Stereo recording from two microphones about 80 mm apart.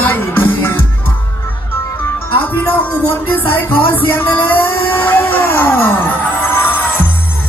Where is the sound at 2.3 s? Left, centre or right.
Left.